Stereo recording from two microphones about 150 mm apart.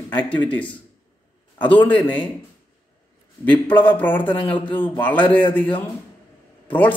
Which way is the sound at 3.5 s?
10° left (ahead or behind).